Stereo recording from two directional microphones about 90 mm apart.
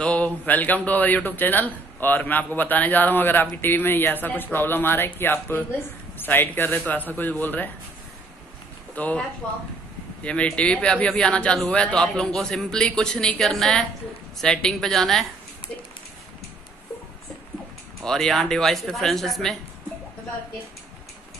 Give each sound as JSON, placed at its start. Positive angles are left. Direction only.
{"t": 0.0, "sound": "speech", "side_deg": 15}
{"t": 8.9, "sound": "speech", "side_deg": 15}
{"t": 10.2, "sound": "speech", "side_deg": 15}
{"t": 18.0, "sound": "speech", "side_deg": 5}